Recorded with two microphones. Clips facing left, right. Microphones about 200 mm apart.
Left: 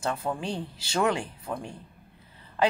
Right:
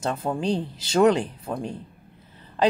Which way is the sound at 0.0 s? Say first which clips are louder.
Right 4 dB; 25° right (ahead or behind).